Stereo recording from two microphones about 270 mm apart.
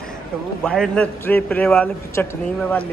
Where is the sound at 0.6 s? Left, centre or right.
Centre.